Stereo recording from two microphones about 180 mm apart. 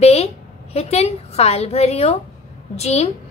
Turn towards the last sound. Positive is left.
turn(degrees=35)  # may be behind; listen again after turning